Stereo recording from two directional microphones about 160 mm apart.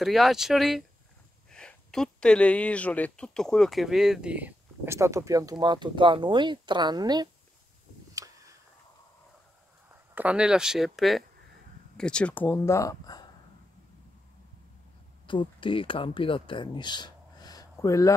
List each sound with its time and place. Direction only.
0.0 s speech: centre (ahead or behind); by 7.2 s 25° right (ahead or behind)
8.1 s a sound: 20° right (ahead or behind)
10.1 s speech: 5° right (ahead or behind); by 13.3 s 25° left (ahead or behind)
15.2 s speech: 30° left (ahead or behind)